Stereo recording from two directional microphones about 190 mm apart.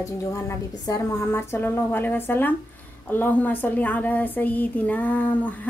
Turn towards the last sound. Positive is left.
turn(degrees=10)  # may be behind; listen again after turning